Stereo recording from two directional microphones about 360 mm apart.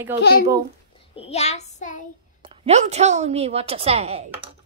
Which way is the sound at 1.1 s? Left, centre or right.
Centre.